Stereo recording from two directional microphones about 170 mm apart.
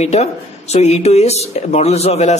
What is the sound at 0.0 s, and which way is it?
Speech, 40° left (ahead or behind).